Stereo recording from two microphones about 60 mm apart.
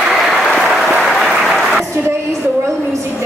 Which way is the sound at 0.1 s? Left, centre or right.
Centre.